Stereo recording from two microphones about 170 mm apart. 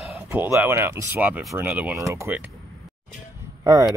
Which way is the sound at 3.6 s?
20° right (ahead or behind).